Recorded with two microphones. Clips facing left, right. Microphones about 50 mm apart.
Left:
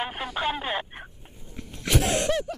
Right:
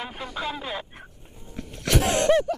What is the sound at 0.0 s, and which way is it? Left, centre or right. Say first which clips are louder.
Speech: left 3 dB; left.